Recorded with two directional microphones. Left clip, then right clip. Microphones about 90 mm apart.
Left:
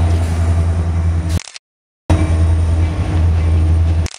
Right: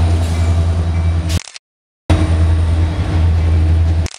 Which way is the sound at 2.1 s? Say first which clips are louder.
Right 1 dB; 20° right (ahead or behind).